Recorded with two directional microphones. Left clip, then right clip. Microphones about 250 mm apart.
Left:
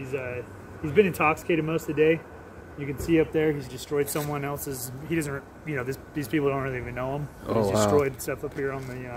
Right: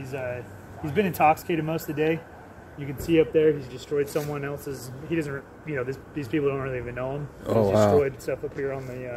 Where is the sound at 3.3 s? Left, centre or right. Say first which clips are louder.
Right 4 dB; left.